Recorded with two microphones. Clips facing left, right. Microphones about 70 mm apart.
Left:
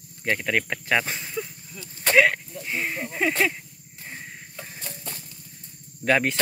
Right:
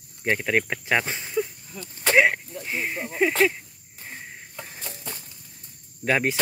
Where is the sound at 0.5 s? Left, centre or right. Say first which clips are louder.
Right 1 dB; centre.